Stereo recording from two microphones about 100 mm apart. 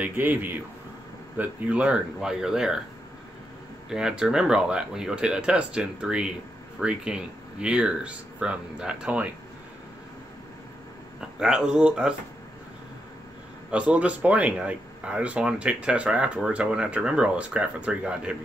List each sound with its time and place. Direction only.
0.0 s a man's voice: 20° right (ahead or behind)
3.9 s speech: 5° right (ahead or behind)
11.1 s speech: 5° right (ahead or behind)
13.7 s speech: 10° right (ahead or behind)